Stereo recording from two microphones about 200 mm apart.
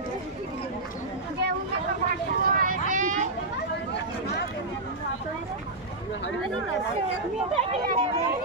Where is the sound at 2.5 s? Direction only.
40° right (ahead or behind).